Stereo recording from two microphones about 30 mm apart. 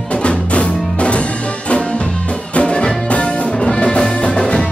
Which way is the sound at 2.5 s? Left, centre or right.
Left.